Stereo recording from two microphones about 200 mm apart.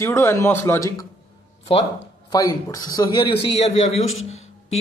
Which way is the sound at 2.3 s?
15° left (ahead or behind).